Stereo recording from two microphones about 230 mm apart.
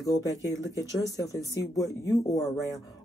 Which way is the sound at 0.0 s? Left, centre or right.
Centre.